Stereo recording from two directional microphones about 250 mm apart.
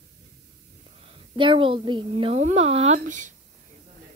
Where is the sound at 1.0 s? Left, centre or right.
Centre.